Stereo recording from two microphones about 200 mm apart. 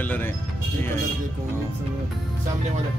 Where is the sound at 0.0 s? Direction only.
10° left (ahead or behind).